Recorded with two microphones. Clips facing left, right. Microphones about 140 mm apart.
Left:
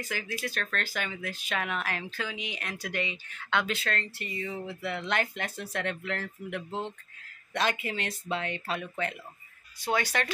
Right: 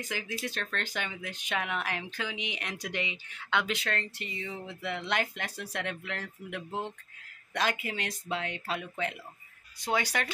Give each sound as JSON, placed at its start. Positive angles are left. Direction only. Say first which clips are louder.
{"t": 0.0, "sound": "speech", "louder": "left 1 dB", "side_deg": -15}